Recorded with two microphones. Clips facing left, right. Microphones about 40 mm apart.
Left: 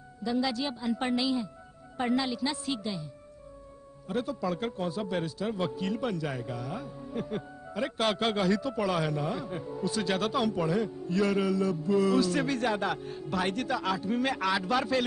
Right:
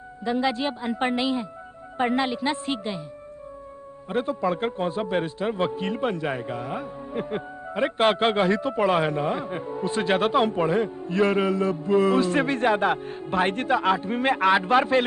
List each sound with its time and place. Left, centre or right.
0.2 s a man's voice: right
4.1 s a man's voice: right